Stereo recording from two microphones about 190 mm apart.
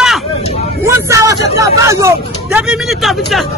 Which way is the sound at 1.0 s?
15° right (ahead or behind).